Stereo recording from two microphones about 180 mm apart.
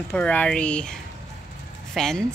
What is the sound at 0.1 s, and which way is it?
Speech, 10° left (ahead or behind).